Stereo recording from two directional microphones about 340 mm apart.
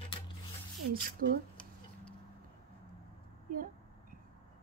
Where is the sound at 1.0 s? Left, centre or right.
Right.